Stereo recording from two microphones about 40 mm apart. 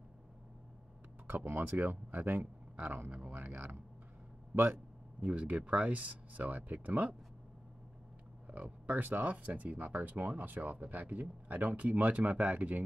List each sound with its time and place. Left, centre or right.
1.3 s speech: right
3.1 s speech: right
3.3 s speech: right
5.2 s speech: right
8.5 s speech: right